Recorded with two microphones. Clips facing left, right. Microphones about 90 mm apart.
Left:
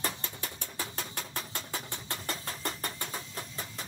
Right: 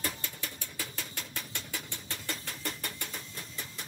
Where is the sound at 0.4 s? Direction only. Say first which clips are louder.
Left 2 dB; 35° left (ahead or behind).